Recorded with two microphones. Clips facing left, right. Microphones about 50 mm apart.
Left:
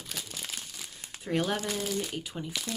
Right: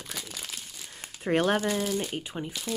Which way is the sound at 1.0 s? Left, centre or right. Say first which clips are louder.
Right 5 dB; right.